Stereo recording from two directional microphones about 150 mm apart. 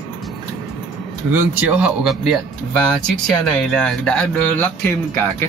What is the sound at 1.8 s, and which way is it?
Speech, centre (ahead or behind).